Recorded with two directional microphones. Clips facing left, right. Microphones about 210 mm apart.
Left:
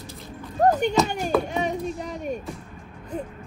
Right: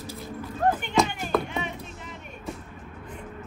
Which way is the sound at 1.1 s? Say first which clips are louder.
Left 7 dB; 40° left (ahead or behind).